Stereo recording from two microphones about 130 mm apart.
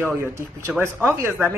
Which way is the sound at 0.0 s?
20° right (ahead or behind).